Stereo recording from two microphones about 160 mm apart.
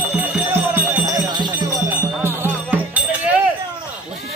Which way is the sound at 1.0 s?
25° right (ahead or behind).